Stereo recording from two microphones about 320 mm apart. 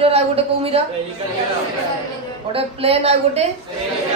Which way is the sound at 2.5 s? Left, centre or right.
Centre.